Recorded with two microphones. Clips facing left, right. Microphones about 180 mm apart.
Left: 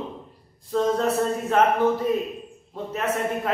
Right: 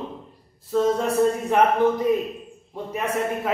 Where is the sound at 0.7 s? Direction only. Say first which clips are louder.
Right 1 dB; 5° right (ahead or behind).